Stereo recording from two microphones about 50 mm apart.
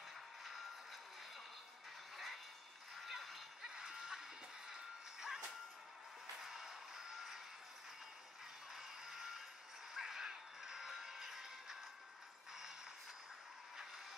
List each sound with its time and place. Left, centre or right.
0.4 s music: centre
2.1 s a sound: centre
3.6 s music: centre
6.4 s music: centre
8.7 s a sound: centre
9.9 s music: centre